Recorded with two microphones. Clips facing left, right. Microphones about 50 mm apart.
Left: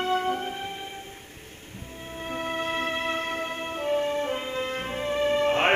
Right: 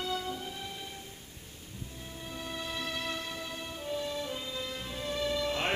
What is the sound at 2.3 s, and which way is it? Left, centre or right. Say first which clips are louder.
Music: left 10 dB; left.